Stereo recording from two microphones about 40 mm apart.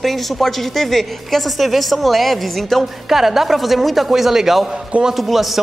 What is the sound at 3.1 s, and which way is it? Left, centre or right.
A man's voice, centre.